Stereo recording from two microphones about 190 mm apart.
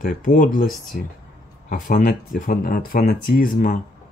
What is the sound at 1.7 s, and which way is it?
Speech, 45° left (ahead or behind).